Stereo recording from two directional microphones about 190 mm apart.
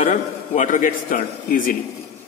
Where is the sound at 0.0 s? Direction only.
35° left (ahead or behind).